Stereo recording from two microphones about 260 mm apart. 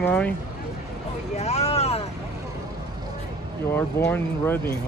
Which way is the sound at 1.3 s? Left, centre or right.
Left.